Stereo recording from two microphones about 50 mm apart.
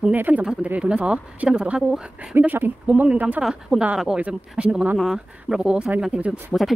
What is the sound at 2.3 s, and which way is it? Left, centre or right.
Speech, right.